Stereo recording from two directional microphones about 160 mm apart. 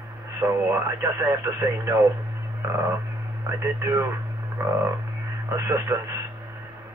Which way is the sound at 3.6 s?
15° right (ahead or behind).